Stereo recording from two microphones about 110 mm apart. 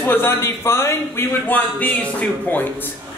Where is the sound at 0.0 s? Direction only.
20° left (ahead or behind).